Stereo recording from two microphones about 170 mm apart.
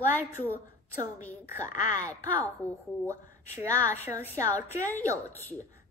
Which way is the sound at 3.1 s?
20° right (ahead or behind).